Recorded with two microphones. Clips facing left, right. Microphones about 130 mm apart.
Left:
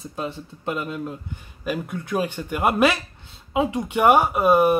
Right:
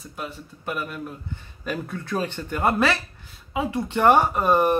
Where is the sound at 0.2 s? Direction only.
20° left (ahead or behind).